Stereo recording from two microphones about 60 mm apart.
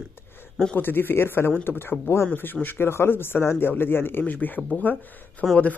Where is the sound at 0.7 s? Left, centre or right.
Left.